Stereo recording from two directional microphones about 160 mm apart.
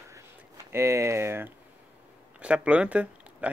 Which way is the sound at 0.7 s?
15° right (ahead or behind).